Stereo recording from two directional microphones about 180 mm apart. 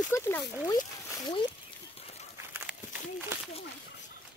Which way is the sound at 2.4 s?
10° right (ahead or behind).